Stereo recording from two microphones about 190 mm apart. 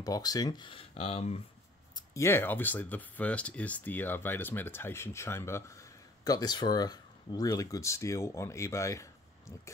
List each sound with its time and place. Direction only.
0.0 s speech: 20° left (ahead or behind)
2.0 s speech: 15° left (ahead or behind)